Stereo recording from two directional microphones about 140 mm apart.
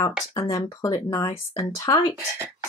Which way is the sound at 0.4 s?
25° left (ahead or behind).